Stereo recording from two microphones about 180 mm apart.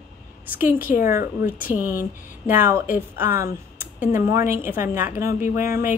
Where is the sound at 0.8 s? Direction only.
50° left (ahead or behind).